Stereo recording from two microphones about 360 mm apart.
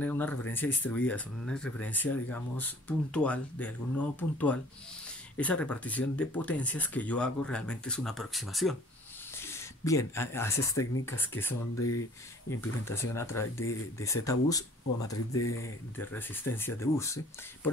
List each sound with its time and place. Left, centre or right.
0.0 s speech: centre
11.7 s speech: left
12.4 s speech: centre